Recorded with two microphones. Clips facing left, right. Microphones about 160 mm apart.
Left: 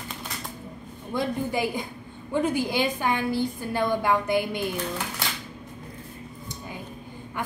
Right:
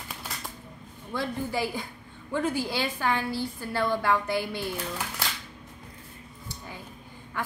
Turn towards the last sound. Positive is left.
turn(degrees=15)  # may be behind; listen again after turning